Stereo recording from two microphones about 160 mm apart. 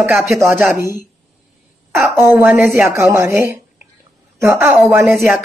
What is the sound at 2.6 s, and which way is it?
Speech, centre (ahead or behind).